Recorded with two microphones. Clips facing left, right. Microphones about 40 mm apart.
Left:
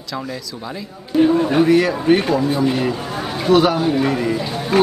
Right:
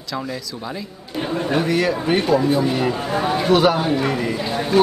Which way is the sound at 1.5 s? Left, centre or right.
Centre.